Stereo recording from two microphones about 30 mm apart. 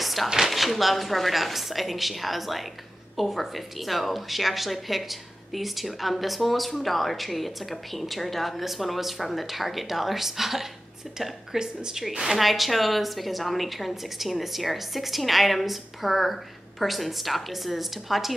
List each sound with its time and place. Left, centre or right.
0.0 s a sound: centre
0.4 s speech: centre
11.5 s a woman's voice: right
12.4 s speech: centre